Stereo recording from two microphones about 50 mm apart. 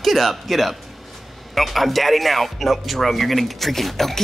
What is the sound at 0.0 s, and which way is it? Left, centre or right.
A man's voice, centre.